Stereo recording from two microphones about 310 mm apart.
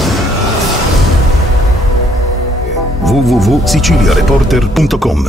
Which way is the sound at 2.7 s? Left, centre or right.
Centre.